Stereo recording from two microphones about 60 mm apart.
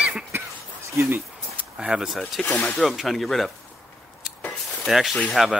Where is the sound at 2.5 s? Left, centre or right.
Centre.